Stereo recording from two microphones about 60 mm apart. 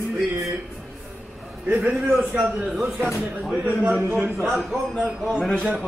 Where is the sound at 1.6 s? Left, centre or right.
Right.